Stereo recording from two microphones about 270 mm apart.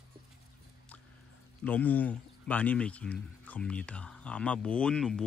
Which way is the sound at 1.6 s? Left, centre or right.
Centre.